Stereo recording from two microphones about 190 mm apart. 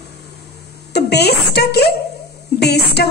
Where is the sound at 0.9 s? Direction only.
60° left (ahead or behind).